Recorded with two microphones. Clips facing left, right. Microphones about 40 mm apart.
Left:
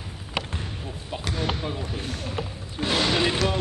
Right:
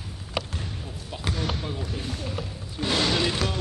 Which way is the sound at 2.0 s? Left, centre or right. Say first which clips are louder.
Left 1 dB; left.